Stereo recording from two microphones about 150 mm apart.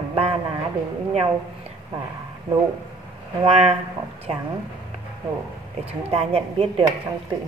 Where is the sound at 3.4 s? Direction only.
45° right (ahead or behind).